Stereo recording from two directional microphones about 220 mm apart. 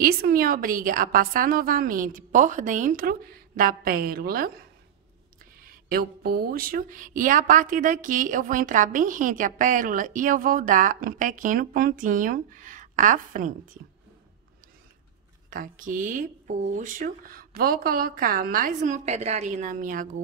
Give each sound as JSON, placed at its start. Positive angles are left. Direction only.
{"t": 0.0, "sound": "speech", "side_deg": -40}
{"t": 5.7, "sound": "speech", "side_deg": -40}
{"t": 15.5, "sound": "speech", "side_deg": -40}